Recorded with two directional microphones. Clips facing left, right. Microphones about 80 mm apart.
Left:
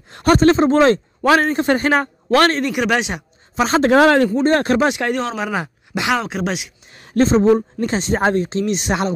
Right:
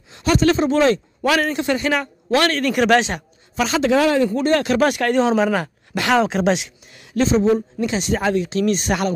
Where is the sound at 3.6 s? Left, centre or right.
Left.